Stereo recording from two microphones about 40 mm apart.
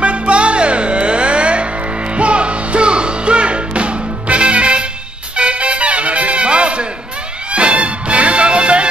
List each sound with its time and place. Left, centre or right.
0.0 s music: right